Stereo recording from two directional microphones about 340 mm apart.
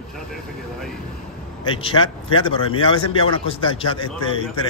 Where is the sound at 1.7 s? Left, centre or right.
Centre.